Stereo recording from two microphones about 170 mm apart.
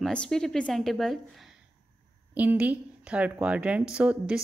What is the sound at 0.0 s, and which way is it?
Speech, 5° left (ahead or behind).